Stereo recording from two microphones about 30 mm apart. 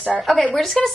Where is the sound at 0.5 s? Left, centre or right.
Centre.